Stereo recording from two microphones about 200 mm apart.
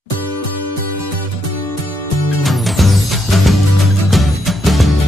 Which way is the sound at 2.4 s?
Centre (ahead or behind).